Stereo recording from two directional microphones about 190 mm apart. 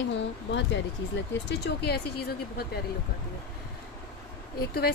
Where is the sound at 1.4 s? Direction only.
60° left (ahead or behind).